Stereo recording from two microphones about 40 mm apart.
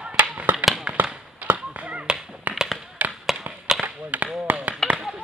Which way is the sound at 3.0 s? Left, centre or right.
Right.